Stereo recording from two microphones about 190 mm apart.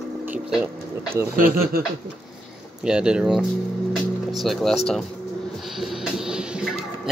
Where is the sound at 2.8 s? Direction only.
5° right (ahead or behind).